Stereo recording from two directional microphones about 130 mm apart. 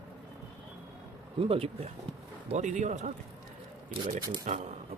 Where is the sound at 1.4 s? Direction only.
50° right (ahead or behind).